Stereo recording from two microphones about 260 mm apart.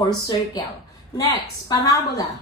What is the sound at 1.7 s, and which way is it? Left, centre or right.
Speech, centre.